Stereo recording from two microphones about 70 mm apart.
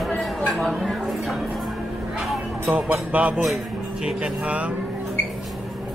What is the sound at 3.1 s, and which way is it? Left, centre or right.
A man's voice, centre.